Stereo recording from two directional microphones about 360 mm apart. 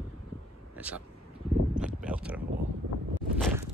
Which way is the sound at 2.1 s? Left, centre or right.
Centre.